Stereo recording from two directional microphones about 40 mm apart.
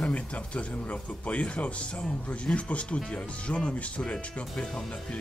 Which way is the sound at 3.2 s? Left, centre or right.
Left.